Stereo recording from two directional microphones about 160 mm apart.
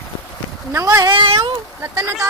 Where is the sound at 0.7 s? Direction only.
15° right (ahead or behind).